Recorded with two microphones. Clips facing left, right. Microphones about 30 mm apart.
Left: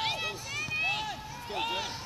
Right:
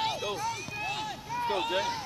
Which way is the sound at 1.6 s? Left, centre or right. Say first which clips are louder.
Right 3 dB; centre.